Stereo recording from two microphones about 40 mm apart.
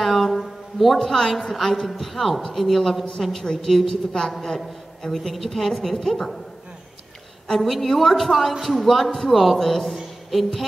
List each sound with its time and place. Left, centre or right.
0.0 s a woman's voice: centre
3.5 s a woman's voice: centre
4.1 s a woman's voice: centre
7.4 s speech: centre